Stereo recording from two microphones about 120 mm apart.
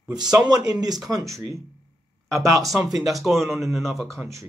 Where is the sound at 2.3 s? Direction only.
25° right (ahead or behind).